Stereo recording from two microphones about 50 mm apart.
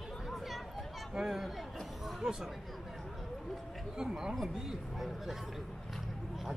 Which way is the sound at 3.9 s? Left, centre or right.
Centre.